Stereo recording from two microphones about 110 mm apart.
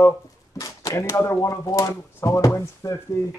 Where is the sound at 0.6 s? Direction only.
30° left (ahead or behind).